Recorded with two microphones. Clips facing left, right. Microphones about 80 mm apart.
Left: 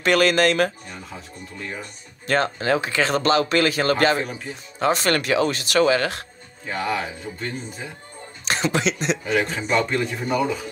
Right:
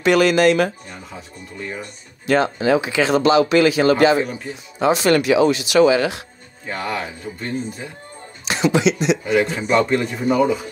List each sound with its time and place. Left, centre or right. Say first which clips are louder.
0.0 s speech: right 4 dB; left
0.8 s speech: right 1 dB; centre
2.2 s speech: right 4 dB; left
6.7 s a man's voice: even; centre
8.5 s speech: right 5 dB; left
9.2 s a man's voice: right 4 dB; centre